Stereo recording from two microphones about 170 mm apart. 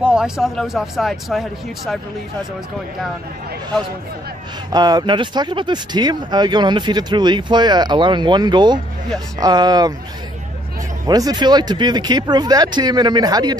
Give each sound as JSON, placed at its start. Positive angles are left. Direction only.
{"t": 0.0, "sound": "speech", "side_deg": -5}
{"t": 4.7, "sound": "speech", "side_deg": -25}
{"t": 11.1, "sound": "speech", "side_deg": -25}